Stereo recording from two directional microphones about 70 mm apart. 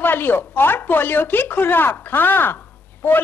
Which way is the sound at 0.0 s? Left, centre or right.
Left.